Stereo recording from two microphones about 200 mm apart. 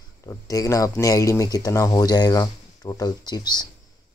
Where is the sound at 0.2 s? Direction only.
15° left (ahead or behind).